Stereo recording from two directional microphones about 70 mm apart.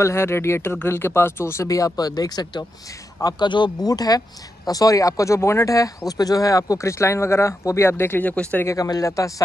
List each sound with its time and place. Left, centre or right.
0.0 s speech: left
8.6 s speech: left